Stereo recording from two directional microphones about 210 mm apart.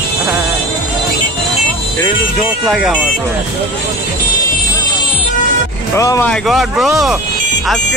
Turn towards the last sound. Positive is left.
turn(degrees=0)  # may be behind; listen again after turning